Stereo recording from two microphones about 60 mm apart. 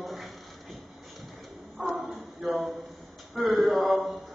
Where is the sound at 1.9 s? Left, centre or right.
Centre.